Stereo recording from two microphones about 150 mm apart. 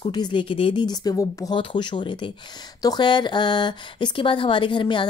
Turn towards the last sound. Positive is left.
turn(degrees=30)  # may be behind; listen again after turning